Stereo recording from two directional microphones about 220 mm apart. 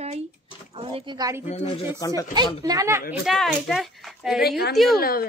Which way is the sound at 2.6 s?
15° right (ahead or behind).